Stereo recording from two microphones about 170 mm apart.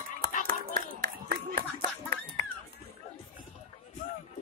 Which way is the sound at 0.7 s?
65° right (ahead or behind).